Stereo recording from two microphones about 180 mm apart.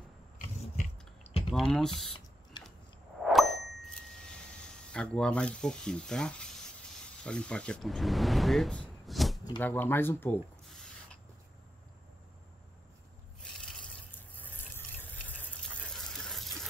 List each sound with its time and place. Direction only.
0.7 s chewing: 35° left (ahead or behind)
1.5 s speech: centre (ahead or behind)
3.3 s ding: centre (ahead or behind)
7.2 s speech: 5° left (ahead or behind)
9.6 s speech: 10° left (ahead or behind)
13.4 s a sound: 5° left (ahead or behind)